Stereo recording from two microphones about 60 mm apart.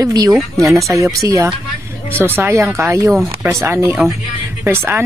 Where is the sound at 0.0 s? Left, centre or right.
Right.